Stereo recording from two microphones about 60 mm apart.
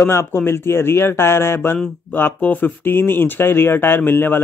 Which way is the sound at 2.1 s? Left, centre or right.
Left.